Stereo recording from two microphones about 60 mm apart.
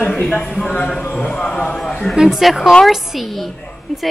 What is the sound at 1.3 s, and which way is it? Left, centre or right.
Speech, centre.